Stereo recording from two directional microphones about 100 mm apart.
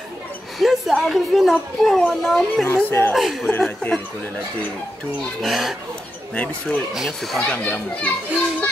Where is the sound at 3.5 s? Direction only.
15° left (ahead or behind).